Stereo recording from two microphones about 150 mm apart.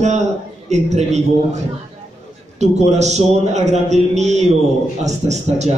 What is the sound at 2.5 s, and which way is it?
A man's voice, 50° right (ahead or behind).